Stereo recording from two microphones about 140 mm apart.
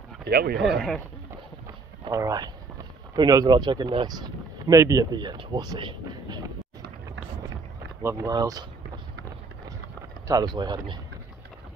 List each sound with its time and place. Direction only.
0.3 s speech: 90° right
2.0 s speech: 25° right (ahead or behind)
8.0 s speech: 20° right (ahead or behind)
10.2 s speech: 30° right (ahead or behind)